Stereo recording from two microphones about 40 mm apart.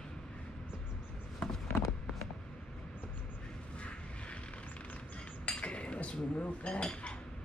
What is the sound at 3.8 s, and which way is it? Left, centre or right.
Vehicle, left.